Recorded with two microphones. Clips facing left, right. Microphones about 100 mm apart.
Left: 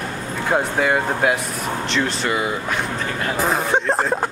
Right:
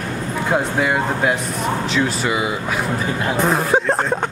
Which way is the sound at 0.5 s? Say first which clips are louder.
Even; centre (ahead or behind).